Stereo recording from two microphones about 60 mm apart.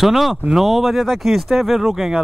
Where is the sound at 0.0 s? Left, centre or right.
Centre.